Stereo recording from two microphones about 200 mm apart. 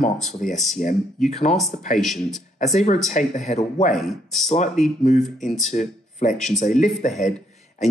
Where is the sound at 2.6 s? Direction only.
35° left (ahead or behind).